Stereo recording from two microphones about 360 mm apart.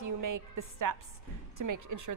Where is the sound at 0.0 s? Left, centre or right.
Right.